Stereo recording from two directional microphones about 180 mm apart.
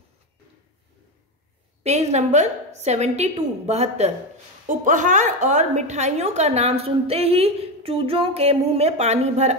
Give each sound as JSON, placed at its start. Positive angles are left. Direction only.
{"t": 1.8, "sound": "a woman's voice", "side_deg": -40}